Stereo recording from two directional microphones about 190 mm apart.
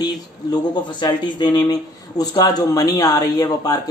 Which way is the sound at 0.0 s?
20° left (ahead or behind).